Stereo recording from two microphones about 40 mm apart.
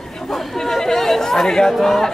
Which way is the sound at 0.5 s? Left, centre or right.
Centre.